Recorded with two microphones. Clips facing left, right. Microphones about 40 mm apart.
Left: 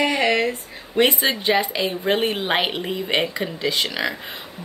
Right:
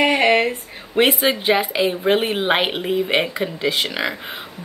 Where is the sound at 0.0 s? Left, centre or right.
Right.